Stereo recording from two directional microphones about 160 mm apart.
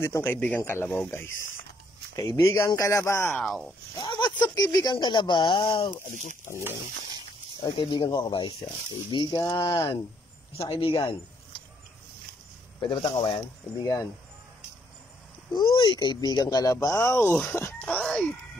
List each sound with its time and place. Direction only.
0.0 s speech: 15° left (ahead or behind)
3.4 s speech: centre (ahead or behind)
3.9 s speech: 25° left (ahead or behind)
7.6 s speech: 30° left (ahead or behind)
10.7 s speech: 35° left (ahead or behind)
12.8 s speech: 30° left (ahead or behind)
15.5 s speech: 25° left (ahead or behind); by 18.3 s 5° left (ahead or behind)